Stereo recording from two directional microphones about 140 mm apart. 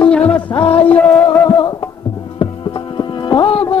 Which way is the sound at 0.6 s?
45° left (ahead or behind).